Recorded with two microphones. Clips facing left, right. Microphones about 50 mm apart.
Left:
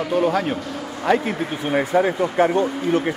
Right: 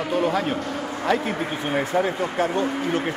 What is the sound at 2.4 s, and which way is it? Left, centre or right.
Speech, left.